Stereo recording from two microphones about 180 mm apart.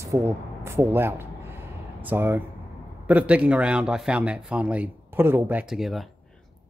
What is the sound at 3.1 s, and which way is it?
A man's voice, 10° right (ahead or behind).